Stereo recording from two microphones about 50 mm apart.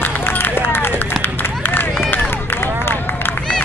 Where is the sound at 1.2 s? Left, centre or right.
Left.